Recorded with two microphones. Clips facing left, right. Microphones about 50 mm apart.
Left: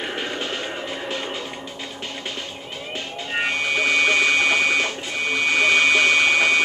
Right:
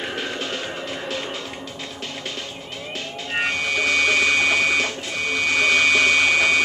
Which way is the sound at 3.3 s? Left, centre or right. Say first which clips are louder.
Even; centre.